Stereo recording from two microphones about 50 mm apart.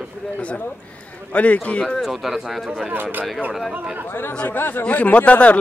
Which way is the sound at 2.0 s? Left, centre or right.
Centre.